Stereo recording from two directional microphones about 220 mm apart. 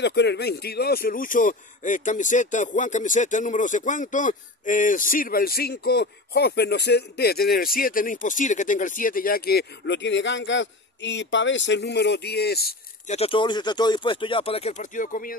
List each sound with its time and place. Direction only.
0.0 s a man's voice: 50° left (ahead or behind)
13.1 s speech: 25° left (ahead or behind)